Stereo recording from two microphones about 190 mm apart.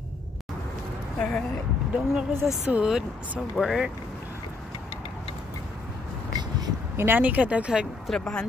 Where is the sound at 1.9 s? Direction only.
5° right (ahead or behind).